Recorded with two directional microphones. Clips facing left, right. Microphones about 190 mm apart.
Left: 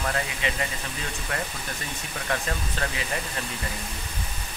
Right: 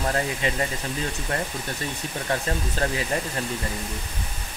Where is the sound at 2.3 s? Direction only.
35° right (ahead or behind).